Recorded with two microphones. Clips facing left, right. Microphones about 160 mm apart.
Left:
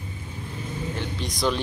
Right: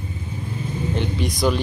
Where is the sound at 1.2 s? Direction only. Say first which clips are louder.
Right 4 dB; 5° right (ahead or behind).